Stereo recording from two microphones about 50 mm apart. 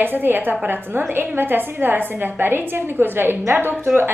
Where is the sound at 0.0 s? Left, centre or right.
Right.